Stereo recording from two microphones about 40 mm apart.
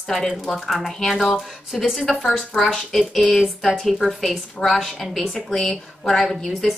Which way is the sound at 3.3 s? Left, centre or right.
Left.